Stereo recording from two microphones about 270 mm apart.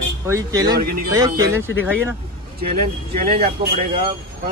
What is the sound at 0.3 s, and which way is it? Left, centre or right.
Speech, centre.